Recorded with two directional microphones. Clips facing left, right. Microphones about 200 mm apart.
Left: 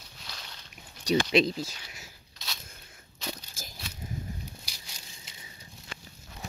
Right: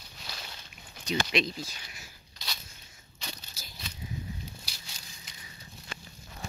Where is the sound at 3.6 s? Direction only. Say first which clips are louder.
Left 6 dB; 50° left (ahead or behind).